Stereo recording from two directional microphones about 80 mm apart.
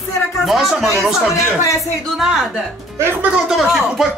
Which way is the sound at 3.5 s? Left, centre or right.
Centre.